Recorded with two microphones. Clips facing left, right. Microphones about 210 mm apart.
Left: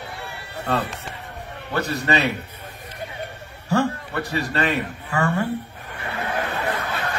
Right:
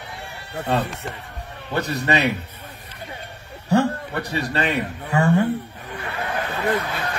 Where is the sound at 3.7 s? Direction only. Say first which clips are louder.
Right 2 dB; 20° right (ahead or behind).